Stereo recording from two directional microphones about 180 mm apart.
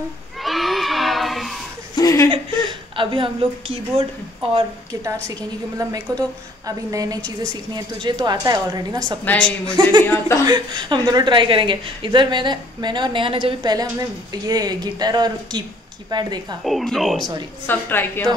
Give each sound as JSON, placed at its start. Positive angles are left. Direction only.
{"t": 0.4, "sound": "a sound", "side_deg": 0}
{"t": 2.0, "sound": "chuckle", "side_deg": 20}
{"t": 3.0, "sound": "a woman's voice", "side_deg": -30}
{"t": 5.8, "sound": "a woman's voice", "side_deg": -20}
{"t": 9.2, "sound": "a woman's voice", "side_deg": 10}
{"t": 10.4, "sound": "a woman's voice", "side_deg": -25}
{"t": 16.6, "sound": "a woman's voice", "side_deg": 0}